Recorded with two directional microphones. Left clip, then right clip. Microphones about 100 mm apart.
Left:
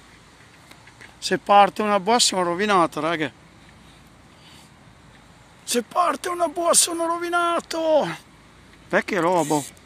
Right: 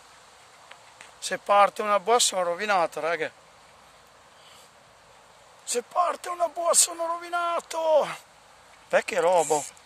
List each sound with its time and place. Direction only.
1.2 s speech: 15° right (ahead or behind)
5.7 s speech: 15° left (ahead or behind)
7.5 s speech: 5° right (ahead or behind)
7.9 s speech: 35° right (ahead or behind)
8.9 s speech: 50° right (ahead or behind)